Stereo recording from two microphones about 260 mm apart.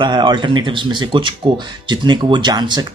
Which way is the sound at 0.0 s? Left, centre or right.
Centre.